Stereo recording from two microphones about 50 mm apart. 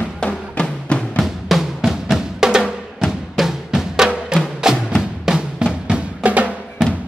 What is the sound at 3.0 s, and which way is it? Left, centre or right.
Drum, centre.